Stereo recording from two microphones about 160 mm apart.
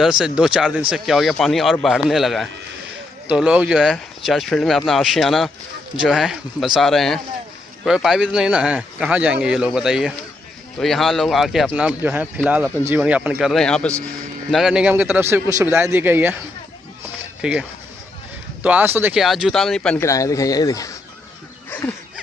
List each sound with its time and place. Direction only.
0.0 s a man's voice: 5° right (ahead or behind)
17.4 s a man's voice: 5° right (ahead or behind)
19.2 s speech: centre (ahead or behind)
20.0 s speech: 20° left (ahead or behind)
21.6 s a sound: 10° left (ahead or behind)